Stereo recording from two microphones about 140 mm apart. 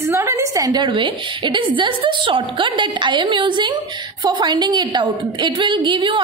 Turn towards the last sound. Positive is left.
turn(degrees=-35)  # may be behind; listen again after turning